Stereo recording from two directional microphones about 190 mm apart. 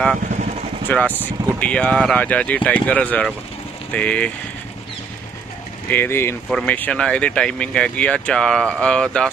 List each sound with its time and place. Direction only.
0.4 s vehicle: 40° right (ahead or behind)
0.8 s speech: 10° left (ahead or behind)
5.9 s speech: 10° left (ahead or behind)